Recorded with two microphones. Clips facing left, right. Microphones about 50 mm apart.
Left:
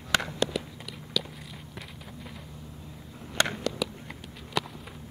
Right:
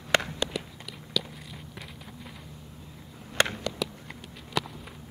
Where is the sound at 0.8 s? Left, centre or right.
Centre.